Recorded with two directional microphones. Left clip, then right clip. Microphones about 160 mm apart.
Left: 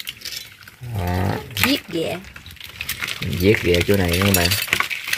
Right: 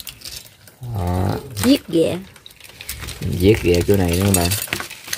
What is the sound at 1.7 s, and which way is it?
Speech, 65° right (ahead or behind).